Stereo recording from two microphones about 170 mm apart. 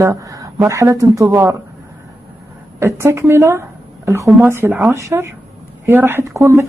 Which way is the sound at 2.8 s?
15° right (ahead or behind).